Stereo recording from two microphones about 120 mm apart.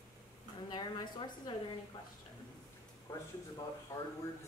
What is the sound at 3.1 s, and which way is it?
Speech, 30° left (ahead or behind).